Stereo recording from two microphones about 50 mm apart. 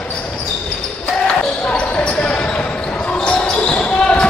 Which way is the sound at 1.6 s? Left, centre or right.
Left.